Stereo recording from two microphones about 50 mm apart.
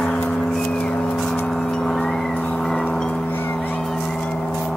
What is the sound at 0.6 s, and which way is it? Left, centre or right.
Vehicle, left.